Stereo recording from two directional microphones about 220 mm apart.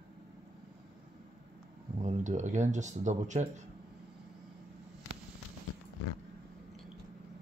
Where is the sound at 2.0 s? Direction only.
35° right (ahead or behind).